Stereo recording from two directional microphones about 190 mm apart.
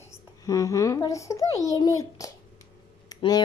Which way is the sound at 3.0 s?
20° left (ahead or behind).